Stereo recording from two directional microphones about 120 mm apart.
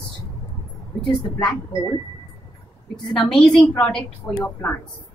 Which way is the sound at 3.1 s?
5° left (ahead or behind).